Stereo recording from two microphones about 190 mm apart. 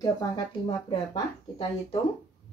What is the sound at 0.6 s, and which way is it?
Speech, 25° left (ahead or behind).